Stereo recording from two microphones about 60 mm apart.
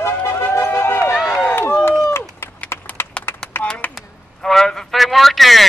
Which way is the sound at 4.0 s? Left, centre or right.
Centre.